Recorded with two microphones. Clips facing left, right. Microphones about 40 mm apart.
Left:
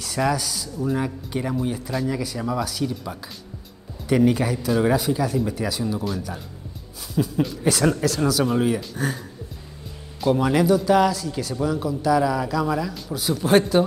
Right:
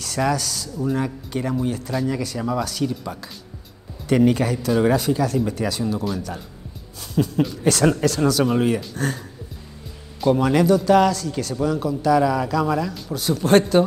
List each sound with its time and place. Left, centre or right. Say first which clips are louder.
0.0 s a man's voice: right 1 dB; centre
8.9 s speech: right 1 dB; centre
10.2 s a man's voice: right 2 dB; centre